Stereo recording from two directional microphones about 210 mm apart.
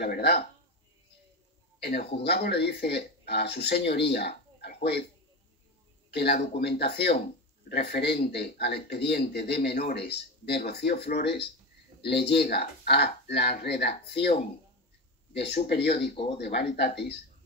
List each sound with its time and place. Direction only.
0.0 s a man's voice: 50° left (ahead or behind)
1.8 s a man's voice: 50° left (ahead or behind)
6.0 s a man's voice: 50° left (ahead or behind)
15.3 s a man's voice: 50° left (ahead or behind)